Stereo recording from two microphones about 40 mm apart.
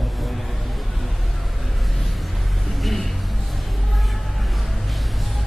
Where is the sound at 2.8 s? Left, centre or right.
Centre.